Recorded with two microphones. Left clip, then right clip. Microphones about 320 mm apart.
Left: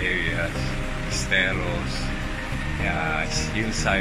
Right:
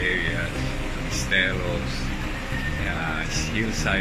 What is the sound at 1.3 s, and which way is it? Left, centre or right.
Speech, centre.